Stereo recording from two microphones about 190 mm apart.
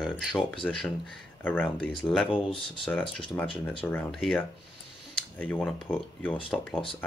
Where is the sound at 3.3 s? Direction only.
10° left (ahead or behind).